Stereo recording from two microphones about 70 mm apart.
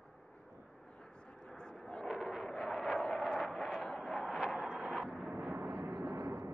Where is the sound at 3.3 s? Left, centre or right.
Centre.